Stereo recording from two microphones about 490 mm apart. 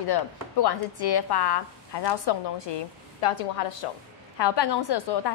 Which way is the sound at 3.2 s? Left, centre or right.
Left.